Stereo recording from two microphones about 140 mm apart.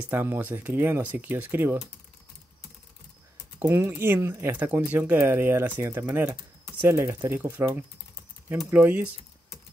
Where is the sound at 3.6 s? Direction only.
15° right (ahead or behind).